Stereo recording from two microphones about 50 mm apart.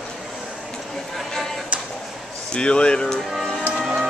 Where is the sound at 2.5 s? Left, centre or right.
Left.